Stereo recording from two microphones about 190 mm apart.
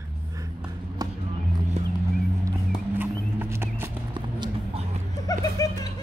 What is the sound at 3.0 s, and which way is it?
Music, 10° right (ahead or behind).